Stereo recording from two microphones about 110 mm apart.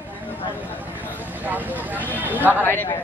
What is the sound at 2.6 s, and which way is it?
Speech, 20° left (ahead or behind).